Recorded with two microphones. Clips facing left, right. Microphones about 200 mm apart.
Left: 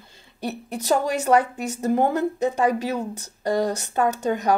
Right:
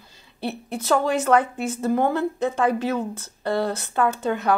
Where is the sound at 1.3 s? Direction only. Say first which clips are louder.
Even; 40° left (ahead or behind).